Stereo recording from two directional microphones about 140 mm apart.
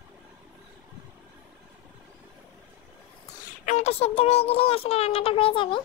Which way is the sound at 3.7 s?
50° left (ahead or behind).